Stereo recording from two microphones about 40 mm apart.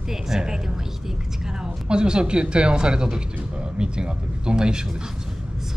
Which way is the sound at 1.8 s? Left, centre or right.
Right.